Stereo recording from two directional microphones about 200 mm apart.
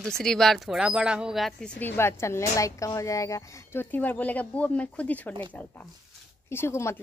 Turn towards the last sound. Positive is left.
turn(degrees=15)  # may be behind; listen again after turning